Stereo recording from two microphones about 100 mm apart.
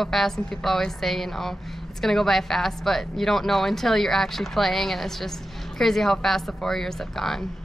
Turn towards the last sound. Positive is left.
turn(degrees=5)  # may be behind; listen again after turning